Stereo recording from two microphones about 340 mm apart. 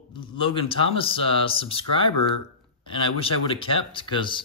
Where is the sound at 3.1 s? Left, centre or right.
Centre.